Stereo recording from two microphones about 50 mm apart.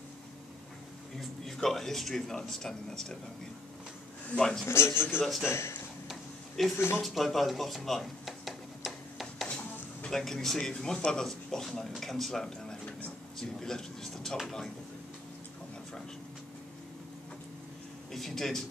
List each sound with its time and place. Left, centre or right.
1.4 s speech: centre
4.4 s speech: centre
4.6 s a man's voice: left
5.5 s speech: left
6.6 s speech: centre
7.0 s a sound: centre
10.1 s speech: centre
18.1 s speech: centre